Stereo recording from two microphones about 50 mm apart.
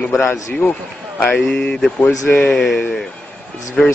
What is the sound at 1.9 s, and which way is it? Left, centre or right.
Speech, left.